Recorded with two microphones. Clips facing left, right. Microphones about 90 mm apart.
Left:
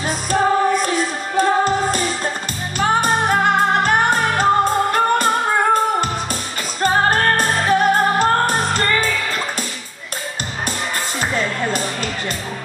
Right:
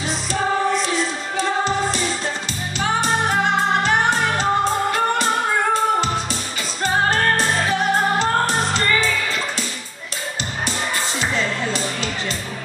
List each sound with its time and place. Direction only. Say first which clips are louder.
0.0 s music: left 5 dB; 50° left (ahead or behind)
11.1 s music: left 3 dB; 50° left (ahead or behind)